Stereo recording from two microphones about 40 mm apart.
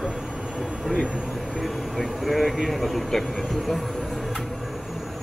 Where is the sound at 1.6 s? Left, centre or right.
Centre.